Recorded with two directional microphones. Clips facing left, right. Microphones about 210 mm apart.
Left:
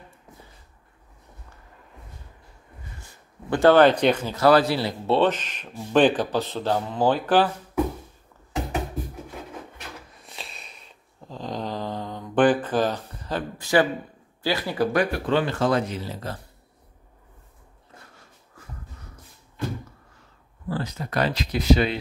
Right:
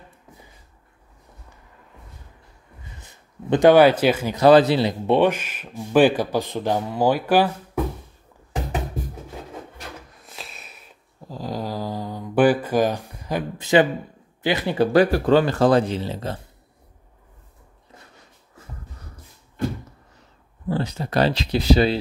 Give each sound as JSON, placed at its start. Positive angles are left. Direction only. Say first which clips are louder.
{"t": 3.0, "sound": "speech", "louder": "right 5 dB", "side_deg": -20}
{"t": 10.1, "sound": "a sound", "louder": "right 1 dB", "side_deg": 0}
{"t": 14.4, "sound": "speech", "louder": "right 3 dB", "side_deg": -20}
{"t": 20.6, "sound": "speech", "louder": "right 4 dB", "side_deg": -25}